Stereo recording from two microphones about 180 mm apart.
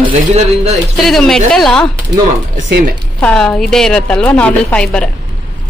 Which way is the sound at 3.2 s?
5° left (ahead or behind).